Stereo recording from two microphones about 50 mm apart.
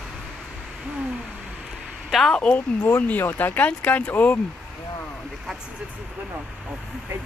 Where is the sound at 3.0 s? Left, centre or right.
Left.